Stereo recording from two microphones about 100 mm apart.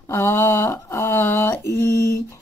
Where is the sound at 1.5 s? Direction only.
30° left (ahead or behind).